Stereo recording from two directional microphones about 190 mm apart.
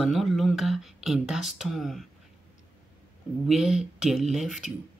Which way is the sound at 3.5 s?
5° right (ahead or behind).